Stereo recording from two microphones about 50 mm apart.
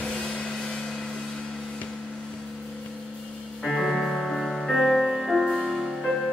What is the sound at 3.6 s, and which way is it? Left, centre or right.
Music, centre.